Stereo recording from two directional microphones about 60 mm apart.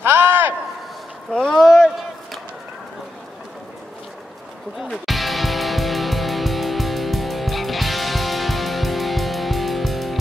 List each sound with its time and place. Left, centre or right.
0.0 s a sound: right
1.4 s speech: centre
4.8 s music: centre